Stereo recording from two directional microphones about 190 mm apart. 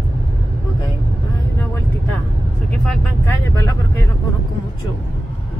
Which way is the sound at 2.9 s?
10° left (ahead or behind).